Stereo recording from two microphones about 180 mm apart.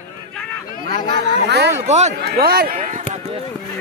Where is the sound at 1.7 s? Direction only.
40° right (ahead or behind).